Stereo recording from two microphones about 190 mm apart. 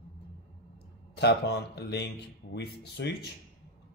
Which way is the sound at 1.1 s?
60° left (ahead or behind).